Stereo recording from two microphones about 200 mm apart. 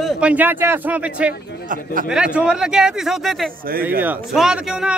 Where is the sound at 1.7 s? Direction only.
45° right (ahead or behind).